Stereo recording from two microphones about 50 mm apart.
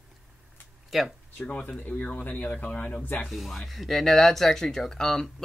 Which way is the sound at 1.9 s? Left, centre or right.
Left.